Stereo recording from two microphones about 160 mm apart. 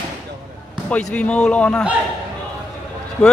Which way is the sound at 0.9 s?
5° left (ahead or behind).